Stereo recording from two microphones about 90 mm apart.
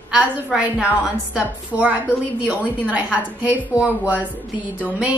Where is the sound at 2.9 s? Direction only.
15° right (ahead or behind).